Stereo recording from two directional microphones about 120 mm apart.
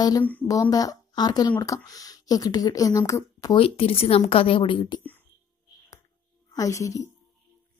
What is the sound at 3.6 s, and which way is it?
Speech, 50° left (ahead or behind).